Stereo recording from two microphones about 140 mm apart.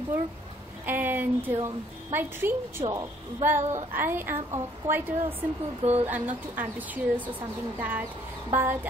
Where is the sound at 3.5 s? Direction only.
60° right (ahead or behind).